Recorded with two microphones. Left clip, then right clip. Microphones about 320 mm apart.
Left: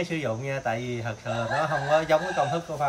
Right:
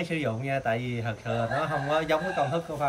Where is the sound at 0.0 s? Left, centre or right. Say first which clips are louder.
Left 1 dB; centre.